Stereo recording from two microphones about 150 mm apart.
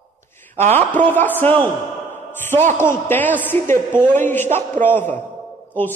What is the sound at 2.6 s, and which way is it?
Speech, 55° right (ahead or behind).